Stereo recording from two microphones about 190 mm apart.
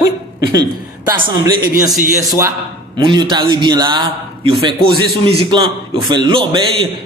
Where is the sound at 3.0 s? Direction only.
25° right (ahead or behind).